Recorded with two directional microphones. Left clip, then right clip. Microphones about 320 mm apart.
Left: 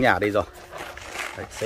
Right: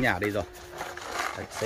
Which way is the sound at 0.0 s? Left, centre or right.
Centre.